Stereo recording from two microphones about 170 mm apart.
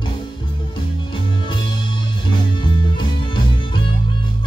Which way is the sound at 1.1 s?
30° left (ahead or behind).